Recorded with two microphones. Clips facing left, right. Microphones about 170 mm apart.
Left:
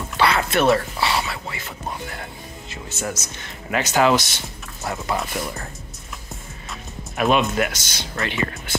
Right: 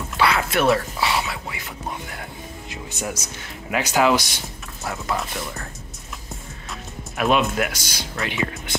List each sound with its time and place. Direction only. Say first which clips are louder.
0.2 s whispering: left 1 dB; 5° right (ahead or behind)
1.3 s a sound: left 1 dB; 10° right (ahead or behind)
2.7 s speech: left 1 dB; 15° right (ahead or behind)
4.8 s speech: left 1 dB; centre (ahead or behind)
7.2 s speech: left 1 dB; centre (ahead or behind)